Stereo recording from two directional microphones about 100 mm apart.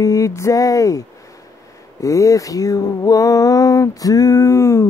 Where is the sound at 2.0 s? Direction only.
35° left (ahead or behind).